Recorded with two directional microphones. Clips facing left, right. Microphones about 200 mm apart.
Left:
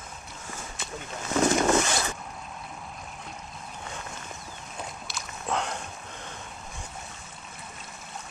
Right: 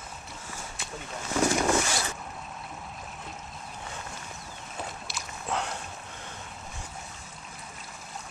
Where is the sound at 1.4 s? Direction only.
20° left (ahead or behind).